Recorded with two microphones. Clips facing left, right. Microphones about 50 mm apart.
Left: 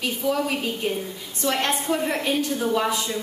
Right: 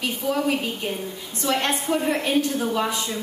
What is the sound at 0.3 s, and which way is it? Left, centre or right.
A woman's voice, centre.